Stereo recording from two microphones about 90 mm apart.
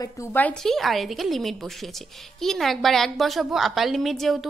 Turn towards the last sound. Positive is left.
turn(degrees=0)  # may be behind; listen again after turning